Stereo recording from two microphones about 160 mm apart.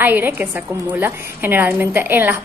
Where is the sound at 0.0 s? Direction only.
10° right (ahead or behind).